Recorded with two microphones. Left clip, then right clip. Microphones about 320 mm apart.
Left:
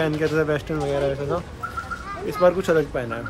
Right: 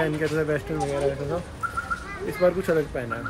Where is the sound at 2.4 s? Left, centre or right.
Centre.